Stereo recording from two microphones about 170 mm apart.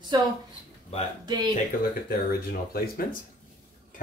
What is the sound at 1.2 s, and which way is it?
Speech, 25° right (ahead or behind).